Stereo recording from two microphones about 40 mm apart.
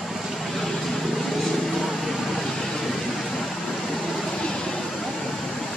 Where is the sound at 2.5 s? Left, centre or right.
Centre.